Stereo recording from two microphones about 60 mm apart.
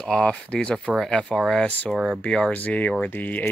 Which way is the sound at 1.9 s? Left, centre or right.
Centre.